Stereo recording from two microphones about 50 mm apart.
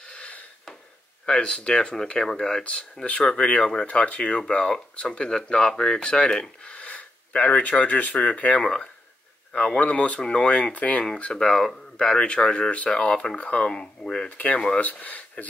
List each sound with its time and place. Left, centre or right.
0.0 s a sound: centre
1.2 s speech: centre
8.5 s speech: centre
9.8 s speech: left
11.3 s speech: centre
14.3 s speech: left